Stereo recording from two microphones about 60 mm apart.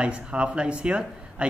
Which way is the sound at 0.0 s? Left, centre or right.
Centre.